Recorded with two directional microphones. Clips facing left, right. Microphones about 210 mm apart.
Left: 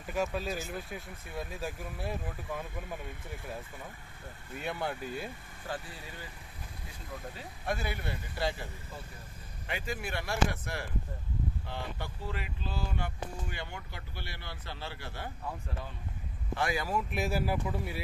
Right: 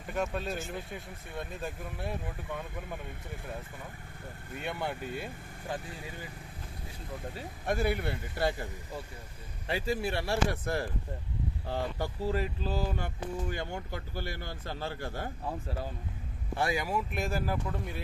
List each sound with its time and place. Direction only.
0.0 s speech: 5° left (ahead or behind)
4.6 s speech: centre (ahead or behind)
7.7 s speech: 55° right (ahead or behind)
9.7 s speech: 35° right (ahead or behind)
16.6 s speech: 20° right (ahead or behind)
17.1 s speech: 5° left (ahead or behind)